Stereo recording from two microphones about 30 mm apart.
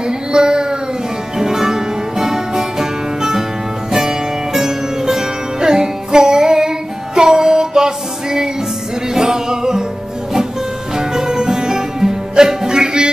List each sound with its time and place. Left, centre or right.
0.0 s a sound: right
1.4 s music: centre
11.0 s music: right